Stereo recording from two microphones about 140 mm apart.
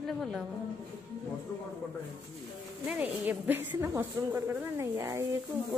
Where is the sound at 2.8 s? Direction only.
10° right (ahead or behind).